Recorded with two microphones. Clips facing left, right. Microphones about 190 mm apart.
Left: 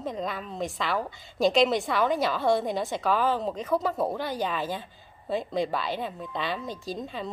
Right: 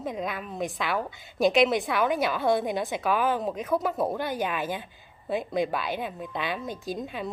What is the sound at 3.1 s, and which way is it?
A woman's voice, 15° right (ahead or behind).